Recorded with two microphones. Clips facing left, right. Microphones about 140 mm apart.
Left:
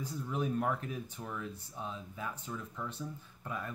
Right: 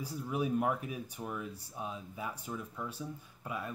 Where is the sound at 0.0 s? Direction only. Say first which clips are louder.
Right 1 dB; 10° right (ahead or behind).